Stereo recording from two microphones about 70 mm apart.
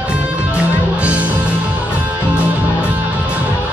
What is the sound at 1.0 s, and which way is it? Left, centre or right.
Music, right.